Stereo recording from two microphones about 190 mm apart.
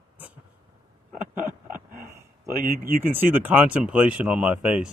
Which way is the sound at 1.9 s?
15° right (ahead or behind).